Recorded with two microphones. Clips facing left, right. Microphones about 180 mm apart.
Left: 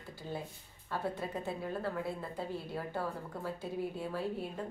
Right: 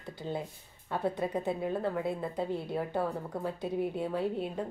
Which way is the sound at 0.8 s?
20° right (ahead or behind).